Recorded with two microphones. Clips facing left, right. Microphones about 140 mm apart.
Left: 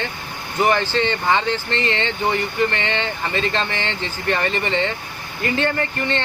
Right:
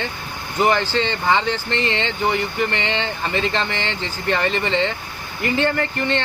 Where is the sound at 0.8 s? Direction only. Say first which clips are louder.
Even; 15° right (ahead or behind).